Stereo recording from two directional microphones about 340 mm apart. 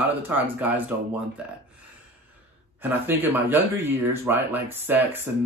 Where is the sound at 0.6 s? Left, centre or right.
Centre.